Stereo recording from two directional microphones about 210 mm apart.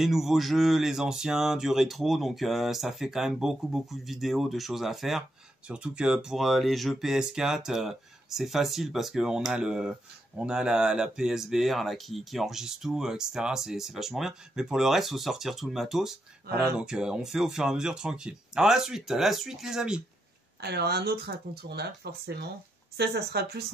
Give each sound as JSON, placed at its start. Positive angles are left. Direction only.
{"t": 0.0, "sound": "speech", "side_deg": 0}
{"t": 20.6, "sound": "speech", "side_deg": -50}